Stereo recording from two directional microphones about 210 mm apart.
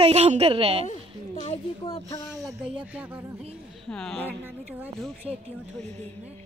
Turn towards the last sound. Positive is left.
turn(degrees=0)  # may be behind; listen again after turning